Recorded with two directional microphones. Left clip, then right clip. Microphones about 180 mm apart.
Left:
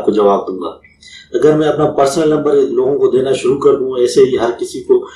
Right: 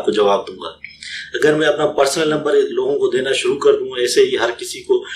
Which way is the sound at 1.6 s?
Centre (ahead or behind).